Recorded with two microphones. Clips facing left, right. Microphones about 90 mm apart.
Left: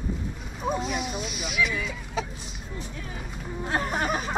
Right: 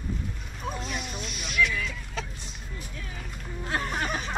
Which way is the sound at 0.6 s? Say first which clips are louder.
Left 6 dB; 5° left (ahead or behind).